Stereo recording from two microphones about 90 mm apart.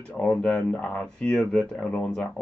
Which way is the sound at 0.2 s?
10° left (ahead or behind).